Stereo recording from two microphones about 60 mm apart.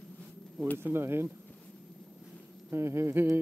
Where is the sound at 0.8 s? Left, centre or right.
Right.